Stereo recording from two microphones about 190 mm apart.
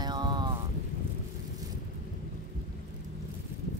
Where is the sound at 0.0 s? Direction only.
20° right (ahead or behind).